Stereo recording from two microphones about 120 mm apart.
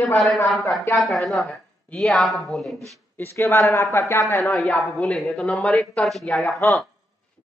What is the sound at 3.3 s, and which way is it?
A woman's voice, 25° left (ahead or behind).